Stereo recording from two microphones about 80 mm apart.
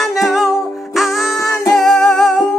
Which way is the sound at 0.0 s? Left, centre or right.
Centre.